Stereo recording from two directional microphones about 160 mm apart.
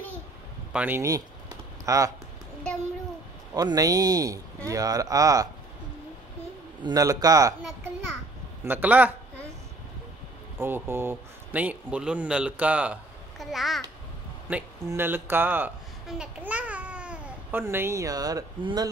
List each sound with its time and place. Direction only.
0.7 s a man's voice: 10° right (ahead or behind)
3.5 s speech: 25° right (ahead or behind)
6.8 s speech: 25° right (ahead or behind)
8.6 s a man's voice: 10° right (ahead or behind)
10.6 s a man's voice: 15° right (ahead or behind)
14.5 s a man's voice: 15° right (ahead or behind)